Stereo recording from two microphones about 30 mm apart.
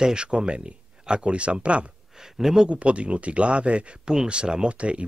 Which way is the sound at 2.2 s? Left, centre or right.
Centre.